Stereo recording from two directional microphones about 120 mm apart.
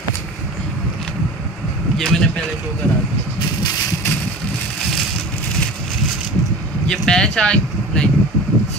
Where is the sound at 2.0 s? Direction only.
5° left (ahead or behind).